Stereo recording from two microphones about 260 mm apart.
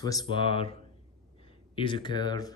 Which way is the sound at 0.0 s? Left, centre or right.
Centre.